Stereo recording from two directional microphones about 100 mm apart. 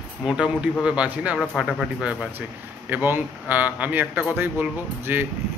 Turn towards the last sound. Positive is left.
turn(degrees=-20)  # may be behind; listen again after turning